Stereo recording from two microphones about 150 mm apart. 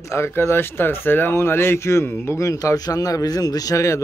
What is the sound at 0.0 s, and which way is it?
A man's voice, 20° left (ahead or behind).